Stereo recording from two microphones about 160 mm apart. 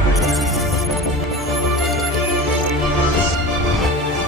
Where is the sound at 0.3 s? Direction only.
Centre (ahead or behind).